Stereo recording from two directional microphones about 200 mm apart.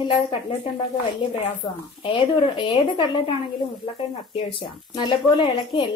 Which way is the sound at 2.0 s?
25° left (ahead or behind).